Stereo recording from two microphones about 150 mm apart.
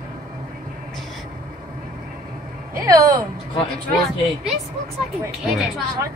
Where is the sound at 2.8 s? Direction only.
20° right (ahead or behind).